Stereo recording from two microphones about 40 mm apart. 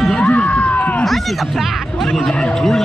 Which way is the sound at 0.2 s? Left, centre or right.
Left.